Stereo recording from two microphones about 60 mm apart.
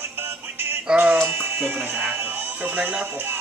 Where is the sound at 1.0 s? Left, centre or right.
Right.